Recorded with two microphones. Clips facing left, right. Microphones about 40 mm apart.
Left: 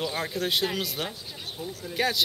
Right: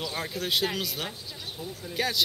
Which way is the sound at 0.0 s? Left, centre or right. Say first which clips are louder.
Left 3 dB; centre.